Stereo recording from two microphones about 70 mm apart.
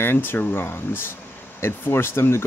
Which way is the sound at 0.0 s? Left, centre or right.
Left.